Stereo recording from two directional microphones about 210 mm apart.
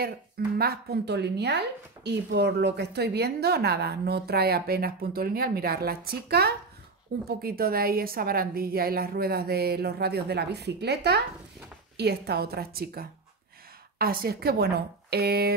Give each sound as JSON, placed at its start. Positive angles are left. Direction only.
{"t": 0.6, "sound": "a woman's voice", "side_deg": -50}